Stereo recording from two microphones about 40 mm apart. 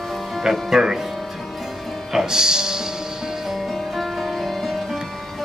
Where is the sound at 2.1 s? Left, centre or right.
Centre.